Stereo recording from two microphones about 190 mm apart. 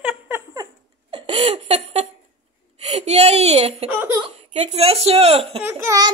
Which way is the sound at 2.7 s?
35° right (ahead or behind).